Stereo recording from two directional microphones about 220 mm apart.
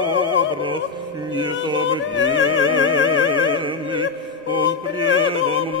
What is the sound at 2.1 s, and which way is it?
Music, 60° left (ahead or behind).